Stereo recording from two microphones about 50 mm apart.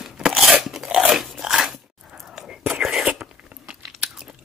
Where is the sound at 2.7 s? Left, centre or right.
Centre.